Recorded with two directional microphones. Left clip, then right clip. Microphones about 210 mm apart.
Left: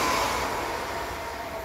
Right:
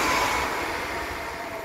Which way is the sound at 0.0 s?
55° left (ahead or behind).